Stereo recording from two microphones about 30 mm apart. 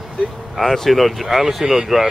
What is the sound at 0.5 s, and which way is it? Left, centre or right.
Speech, centre.